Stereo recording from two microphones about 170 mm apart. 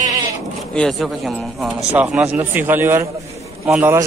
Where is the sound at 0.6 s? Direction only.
Centre (ahead or behind).